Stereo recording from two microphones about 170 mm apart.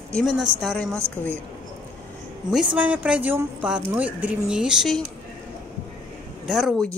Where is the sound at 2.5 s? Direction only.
5° right (ahead or behind).